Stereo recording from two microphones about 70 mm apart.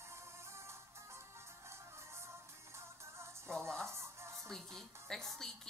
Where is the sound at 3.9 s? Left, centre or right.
Right.